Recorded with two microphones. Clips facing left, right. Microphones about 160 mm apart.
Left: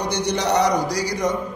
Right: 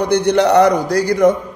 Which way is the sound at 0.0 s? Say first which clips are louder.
Right 9 dB; 60° right (ahead or behind).